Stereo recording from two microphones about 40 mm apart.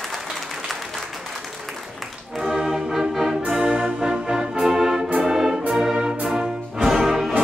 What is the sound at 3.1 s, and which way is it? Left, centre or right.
Music, centre.